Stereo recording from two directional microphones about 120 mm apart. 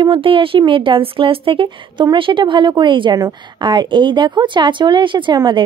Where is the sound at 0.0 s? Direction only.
45° right (ahead or behind).